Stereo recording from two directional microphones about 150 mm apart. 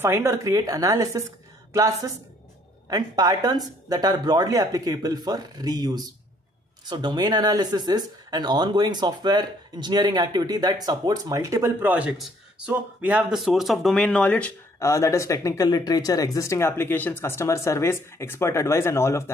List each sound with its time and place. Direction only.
0.0 s speech: 20° right (ahead or behind); by 14.5 s 10° left (ahead or behind)
14.8 s speech: 20° left (ahead or behind)